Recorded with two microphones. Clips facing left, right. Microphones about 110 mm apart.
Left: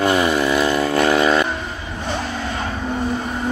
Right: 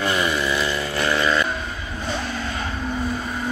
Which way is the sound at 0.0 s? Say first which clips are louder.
Left 6 dB; 45° left (ahead or behind).